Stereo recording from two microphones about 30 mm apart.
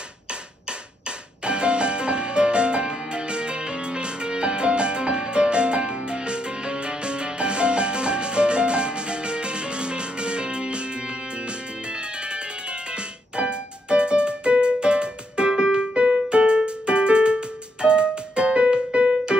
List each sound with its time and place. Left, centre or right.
1.4 s music: right
11.9 s music: right
12.9 s keyboard: right
17.8 s music: right